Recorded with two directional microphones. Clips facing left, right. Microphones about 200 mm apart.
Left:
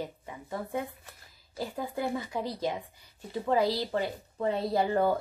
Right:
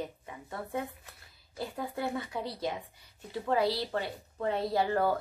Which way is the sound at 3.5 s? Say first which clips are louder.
Left 2 dB; 15° left (ahead or behind).